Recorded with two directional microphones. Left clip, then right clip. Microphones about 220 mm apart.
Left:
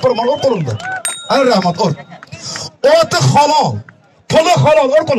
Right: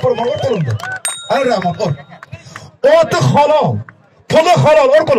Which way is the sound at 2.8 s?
5° right (ahead or behind).